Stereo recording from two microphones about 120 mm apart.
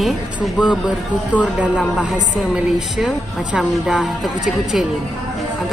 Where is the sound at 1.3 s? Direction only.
10° left (ahead or behind).